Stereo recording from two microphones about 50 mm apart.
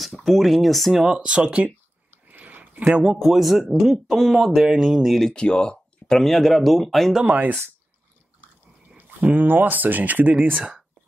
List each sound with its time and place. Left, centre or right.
0.0 s speech: centre
1.0 s speech: centre
2.0 s dog: right
2.9 s speech: centre
3.2 s speech: centre
5.2 s speech: centre
7.2 s speech: right
8.9 s speech: right